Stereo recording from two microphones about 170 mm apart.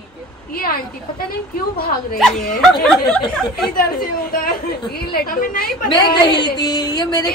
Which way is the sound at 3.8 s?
55° left (ahead or behind).